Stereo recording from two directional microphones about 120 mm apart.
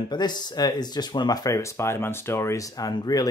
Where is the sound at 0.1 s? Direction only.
35° left (ahead or behind).